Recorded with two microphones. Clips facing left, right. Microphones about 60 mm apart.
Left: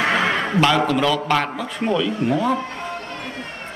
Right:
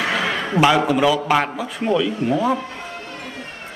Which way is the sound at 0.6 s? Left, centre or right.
Centre.